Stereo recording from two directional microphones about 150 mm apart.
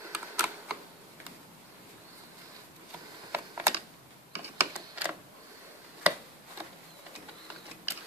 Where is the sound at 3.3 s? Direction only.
15° right (ahead or behind).